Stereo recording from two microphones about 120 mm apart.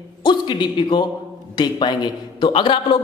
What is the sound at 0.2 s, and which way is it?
A man's voice, 40° left (ahead or behind).